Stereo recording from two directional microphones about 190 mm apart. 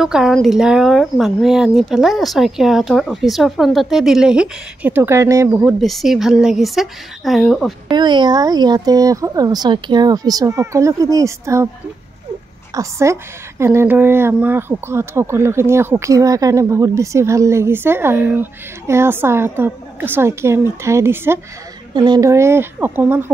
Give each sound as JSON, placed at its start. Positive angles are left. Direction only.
{"t": 0.0, "sound": "speech", "side_deg": 0}
{"t": 7.9, "sound": "speech", "side_deg": -25}
{"t": 12.7, "sound": "a woman's voice", "side_deg": -15}